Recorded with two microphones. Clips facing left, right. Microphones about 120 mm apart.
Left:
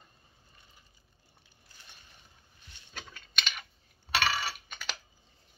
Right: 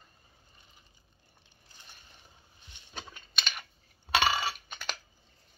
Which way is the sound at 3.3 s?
5° right (ahead or behind).